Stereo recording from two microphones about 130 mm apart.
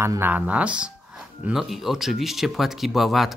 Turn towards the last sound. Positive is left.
turn(degrees=0)  # may be behind; listen again after turning